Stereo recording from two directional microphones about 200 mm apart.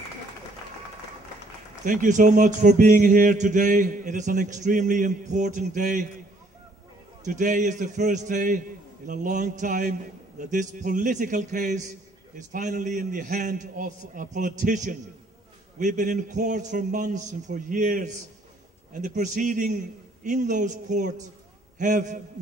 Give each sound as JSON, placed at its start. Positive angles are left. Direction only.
{"t": 1.9, "sound": "speech", "side_deg": -40}
{"t": 7.2, "sound": "speech", "side_deg": -40}